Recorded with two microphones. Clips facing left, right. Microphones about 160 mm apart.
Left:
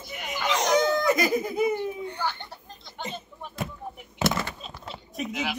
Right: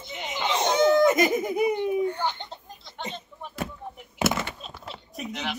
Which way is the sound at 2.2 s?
20° right (ahead or behind).